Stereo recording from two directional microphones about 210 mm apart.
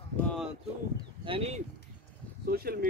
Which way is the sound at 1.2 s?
25° right (ahead or behind).